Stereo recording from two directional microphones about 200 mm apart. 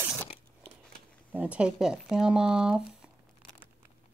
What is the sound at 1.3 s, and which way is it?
Speech, 5° right (ahead or behind).